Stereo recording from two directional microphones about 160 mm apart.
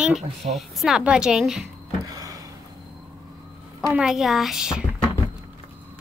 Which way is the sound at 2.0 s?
20° right (ahead or behind).